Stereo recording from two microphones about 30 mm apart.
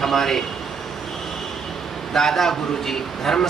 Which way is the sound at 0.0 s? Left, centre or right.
Centre.